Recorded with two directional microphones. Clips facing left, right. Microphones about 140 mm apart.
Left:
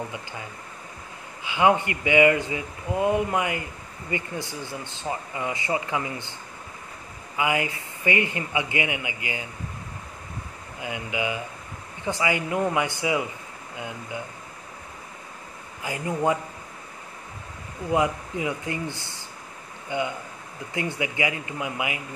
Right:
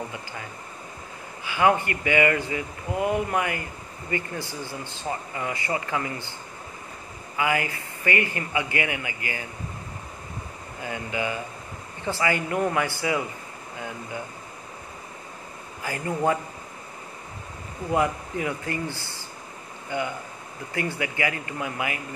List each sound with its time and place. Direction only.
1.4 s speech: 20° left (ahead or behind)
7.3 s speech: 20° left (ahead or behind)
10.8 s speech: 15° left (ahead or behind)
15.8 s speech: 15° left (ahead or behind)
17.9 s speech: 15° left (ahead or behind)